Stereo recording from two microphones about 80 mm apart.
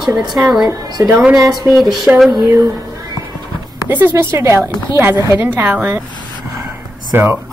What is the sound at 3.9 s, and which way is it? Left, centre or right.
Speech, right.